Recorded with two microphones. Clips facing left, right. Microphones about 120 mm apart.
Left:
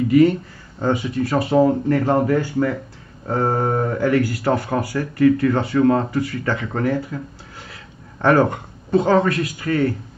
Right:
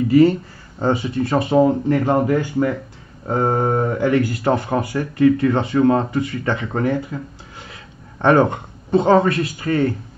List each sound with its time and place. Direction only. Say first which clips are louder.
0.1 s speech: right 1 dB; 30° right (ahead or behind)